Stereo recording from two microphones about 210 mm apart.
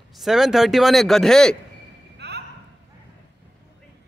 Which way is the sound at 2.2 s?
55° right (ahead or behind).